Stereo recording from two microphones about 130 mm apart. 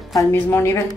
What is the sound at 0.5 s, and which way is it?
Speech, 20° left (ahead or behind).